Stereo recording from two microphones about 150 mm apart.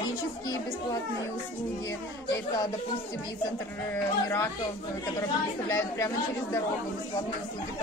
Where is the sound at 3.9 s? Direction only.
15° left (ahead or behind).